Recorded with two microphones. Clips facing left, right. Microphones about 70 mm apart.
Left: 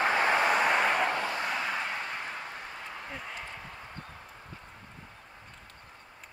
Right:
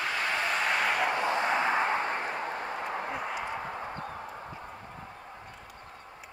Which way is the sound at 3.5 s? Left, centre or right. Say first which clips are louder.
Right 9 dB; right.